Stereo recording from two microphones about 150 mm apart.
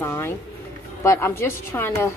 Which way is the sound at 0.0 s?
15° left (ahead or behind).